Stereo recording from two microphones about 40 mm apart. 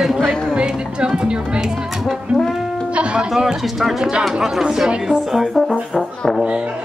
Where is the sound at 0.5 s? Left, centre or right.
Right.